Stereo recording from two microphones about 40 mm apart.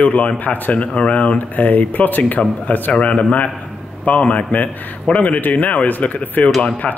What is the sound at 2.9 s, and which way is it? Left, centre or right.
Speech, left.